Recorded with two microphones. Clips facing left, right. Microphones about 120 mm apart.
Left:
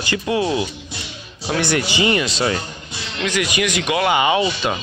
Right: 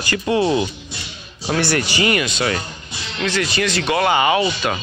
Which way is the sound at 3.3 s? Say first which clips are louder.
Even; 15° left (ahead or behind).